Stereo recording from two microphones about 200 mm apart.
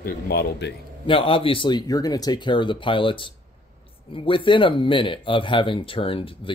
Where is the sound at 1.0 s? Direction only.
25° left (ahead or behind).